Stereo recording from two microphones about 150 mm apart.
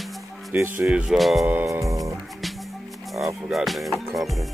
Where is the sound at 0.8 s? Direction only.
10° right (ahead or behind).